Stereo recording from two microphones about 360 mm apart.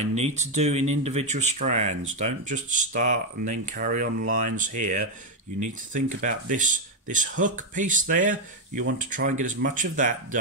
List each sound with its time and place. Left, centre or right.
0.0 s speech: centre